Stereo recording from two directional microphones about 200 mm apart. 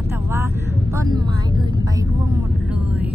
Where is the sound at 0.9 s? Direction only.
20° right (ahead or behind).